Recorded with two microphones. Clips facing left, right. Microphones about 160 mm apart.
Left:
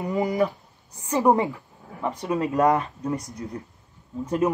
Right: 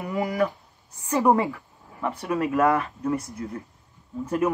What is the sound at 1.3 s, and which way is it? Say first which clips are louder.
Roaring cats: even; 20° left (ahead or behind).